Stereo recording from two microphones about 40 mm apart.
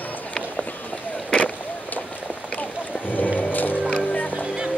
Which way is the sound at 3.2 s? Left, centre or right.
Left.